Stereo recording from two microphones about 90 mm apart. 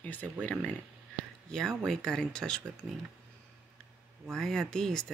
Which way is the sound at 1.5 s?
5° left (ahead or behind).